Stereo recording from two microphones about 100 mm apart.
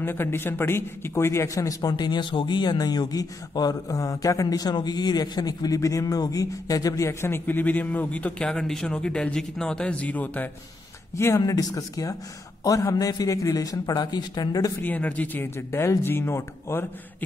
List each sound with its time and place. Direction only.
0.0 s a man's voice: 20° left (ahead or behind)
11.1 s a man's voice: 30° left (ahead or behind)
14.8 s speech: 15° left (ahead or behind)